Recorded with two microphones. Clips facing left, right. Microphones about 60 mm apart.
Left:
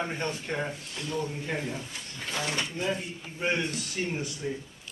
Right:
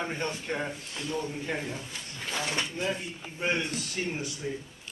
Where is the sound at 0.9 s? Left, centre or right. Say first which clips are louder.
Even; right.